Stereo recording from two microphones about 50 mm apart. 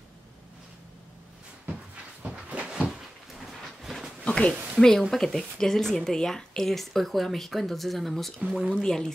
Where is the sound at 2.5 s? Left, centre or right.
Right.